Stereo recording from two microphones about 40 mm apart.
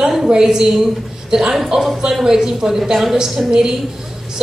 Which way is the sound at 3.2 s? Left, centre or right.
Centre.